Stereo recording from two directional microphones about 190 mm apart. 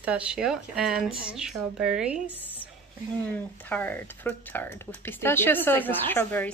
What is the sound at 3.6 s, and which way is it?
Speech, 10° left (ahead or behind).